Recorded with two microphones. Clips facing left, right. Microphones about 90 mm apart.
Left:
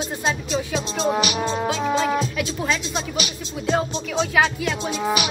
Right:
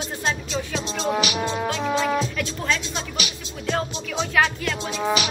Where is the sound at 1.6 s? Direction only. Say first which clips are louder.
Left 2 dB; 10° left (ahead or behind).